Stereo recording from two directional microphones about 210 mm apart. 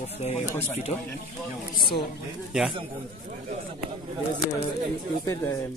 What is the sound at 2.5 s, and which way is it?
Speech, centre (ahead or behind).